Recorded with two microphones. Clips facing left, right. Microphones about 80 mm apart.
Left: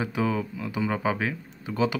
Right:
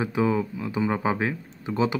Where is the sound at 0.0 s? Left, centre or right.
Right.